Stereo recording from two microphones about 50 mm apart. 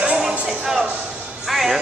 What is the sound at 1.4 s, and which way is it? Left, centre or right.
Music, centre.